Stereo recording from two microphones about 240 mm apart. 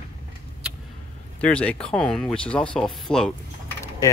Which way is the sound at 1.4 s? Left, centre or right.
Centre.